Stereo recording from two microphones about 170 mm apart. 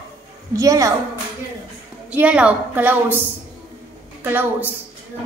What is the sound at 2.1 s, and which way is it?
A woman's voice, 5° right (ahead or behind).